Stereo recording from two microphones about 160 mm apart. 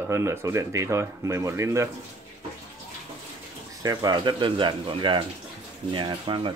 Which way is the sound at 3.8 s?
25° right (ahead or behind).